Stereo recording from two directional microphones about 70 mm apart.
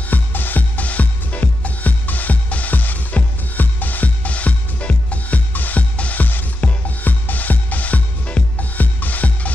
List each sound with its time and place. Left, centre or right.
0.1 s music: left